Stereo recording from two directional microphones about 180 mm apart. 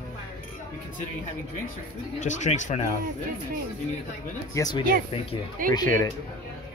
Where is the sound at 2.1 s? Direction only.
45° left (ahead or behind).